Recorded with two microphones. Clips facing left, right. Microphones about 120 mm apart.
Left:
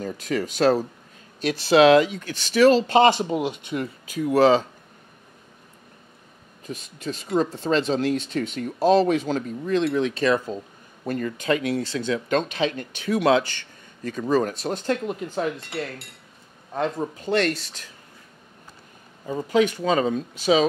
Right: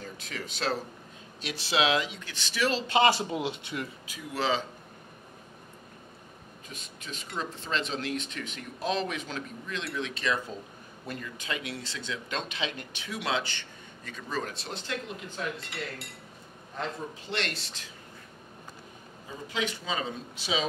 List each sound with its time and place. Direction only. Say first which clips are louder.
0.0 s speech: left 13 dB; 45° left (ahead or behind)
3.1 s speech: left 6 dB; 20° left (ahead or behind)
3.7 s speech: left 9 dB; 45° left (ahead or behind)
6.7 s speech: left 12 dB; 40° left (ahead or behind)
16.7 s speech: left 10 dB; 50° left (ahead or behind)
19.2 s speech: left 13 dB; 50° left (ahead or behind)